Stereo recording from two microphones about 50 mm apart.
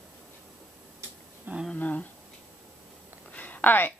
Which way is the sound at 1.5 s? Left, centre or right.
Right.